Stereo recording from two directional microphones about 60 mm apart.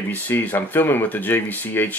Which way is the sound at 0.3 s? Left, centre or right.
Left.